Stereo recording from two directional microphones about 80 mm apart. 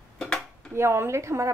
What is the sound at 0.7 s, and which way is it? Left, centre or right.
Speech, right.